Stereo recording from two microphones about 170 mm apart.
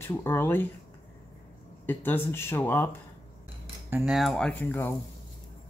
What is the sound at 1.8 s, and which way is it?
Speech, 10° left (ahead or behind).